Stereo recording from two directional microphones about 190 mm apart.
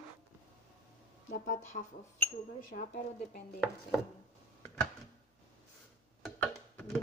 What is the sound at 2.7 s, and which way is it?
Speech, 40° left (ahead or behind).